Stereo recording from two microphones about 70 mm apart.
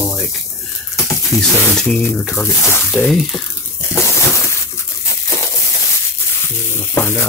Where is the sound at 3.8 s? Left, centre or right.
Left.